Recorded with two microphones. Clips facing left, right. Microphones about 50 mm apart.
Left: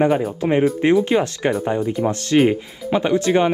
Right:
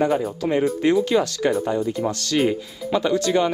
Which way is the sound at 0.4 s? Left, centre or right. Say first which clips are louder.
Left 3 dB; left.